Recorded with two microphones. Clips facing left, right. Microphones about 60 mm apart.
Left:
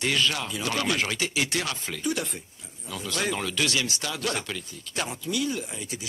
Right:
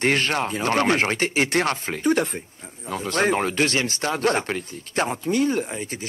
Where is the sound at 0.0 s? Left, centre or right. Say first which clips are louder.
Right 5 dB; right.